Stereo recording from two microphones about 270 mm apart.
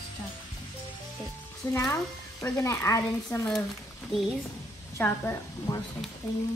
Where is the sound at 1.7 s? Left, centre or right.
Centre.